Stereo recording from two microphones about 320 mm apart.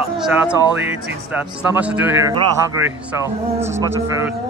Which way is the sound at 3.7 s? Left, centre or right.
Centre.